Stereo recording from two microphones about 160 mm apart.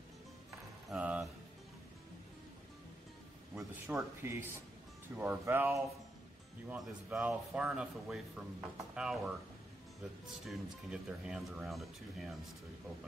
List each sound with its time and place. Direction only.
0.8 s a sound: 10° right (ahead or behind)
3.8 s speech: 15° right (ahead or behind)
10.4 s speech: 5° right (ahead or behind)